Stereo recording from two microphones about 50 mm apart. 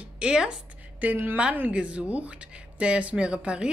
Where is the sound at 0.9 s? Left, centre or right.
Right.